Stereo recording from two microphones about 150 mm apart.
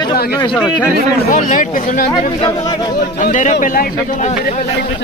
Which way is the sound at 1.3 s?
60° left (ahead or behind).